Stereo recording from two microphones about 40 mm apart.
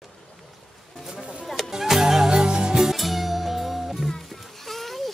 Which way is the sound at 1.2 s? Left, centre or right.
Right.